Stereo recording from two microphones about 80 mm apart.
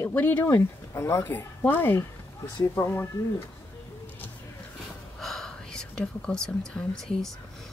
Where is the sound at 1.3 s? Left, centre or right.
Left.